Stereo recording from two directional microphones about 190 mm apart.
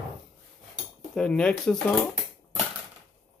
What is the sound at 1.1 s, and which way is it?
Speech, 5° left (ahead or behind).